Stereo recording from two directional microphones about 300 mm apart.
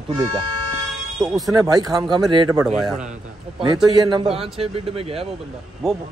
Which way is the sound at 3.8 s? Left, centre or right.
Centre.